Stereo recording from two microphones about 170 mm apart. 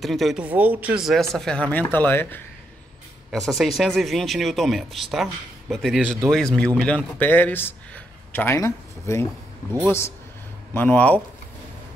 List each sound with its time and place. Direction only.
0.0 s speech: centre (ahead or behind)
3.3 s a man's voice: centre (ahead or behind)